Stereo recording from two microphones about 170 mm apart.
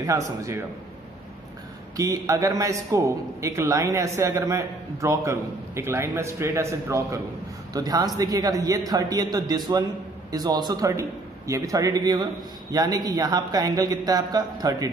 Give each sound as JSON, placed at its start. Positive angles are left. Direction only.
{"t": 0.0, "sound": "a man's voice", "side_deg": -20}
{"t": 2.0, "sound": "a man's voice", "side_deg": -20}